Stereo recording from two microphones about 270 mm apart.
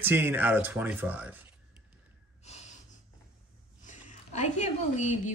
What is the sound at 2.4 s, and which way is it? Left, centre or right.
Snort, left.